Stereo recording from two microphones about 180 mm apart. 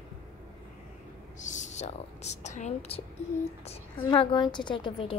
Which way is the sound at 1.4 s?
40° left (ahead or behind).